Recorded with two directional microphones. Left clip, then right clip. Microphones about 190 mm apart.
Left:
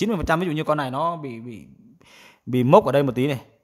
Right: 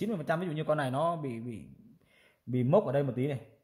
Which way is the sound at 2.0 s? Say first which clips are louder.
Left 10 dB; 35° left (ahead or behind).